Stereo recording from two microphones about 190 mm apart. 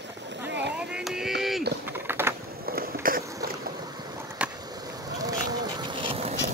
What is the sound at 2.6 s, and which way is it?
Skateboard, 50° right (ahead or behind).